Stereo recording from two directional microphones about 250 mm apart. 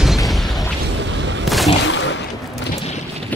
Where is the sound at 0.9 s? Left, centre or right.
Right.